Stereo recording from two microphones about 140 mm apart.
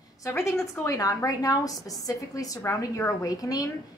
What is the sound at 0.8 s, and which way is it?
A woman's voice, 25° left (ahead or behind).